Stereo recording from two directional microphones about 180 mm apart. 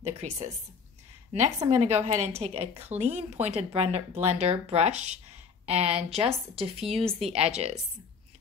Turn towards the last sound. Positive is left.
turn(degrees=-35)  # may be behind; listen again after turning